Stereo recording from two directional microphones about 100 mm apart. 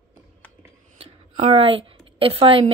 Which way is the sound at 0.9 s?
85° right.